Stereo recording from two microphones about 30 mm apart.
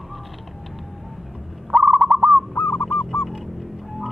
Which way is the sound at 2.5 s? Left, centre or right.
Left.